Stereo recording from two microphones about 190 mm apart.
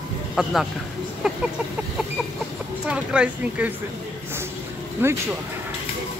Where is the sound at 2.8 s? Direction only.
5° right (ahead or behind).